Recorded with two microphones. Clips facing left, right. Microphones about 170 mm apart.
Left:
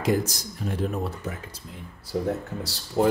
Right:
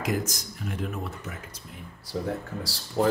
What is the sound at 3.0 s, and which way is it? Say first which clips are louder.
Speech: left 2 dB; 20° left (ahead or behind).